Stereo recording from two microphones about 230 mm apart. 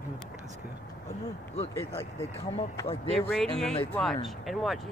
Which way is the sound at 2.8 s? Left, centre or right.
Left.